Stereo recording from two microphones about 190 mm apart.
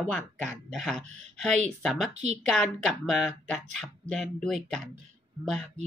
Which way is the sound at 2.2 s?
35° right (ahead or behind).